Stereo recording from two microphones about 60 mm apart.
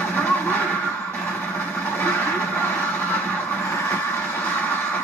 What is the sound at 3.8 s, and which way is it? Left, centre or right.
Vehicle, left.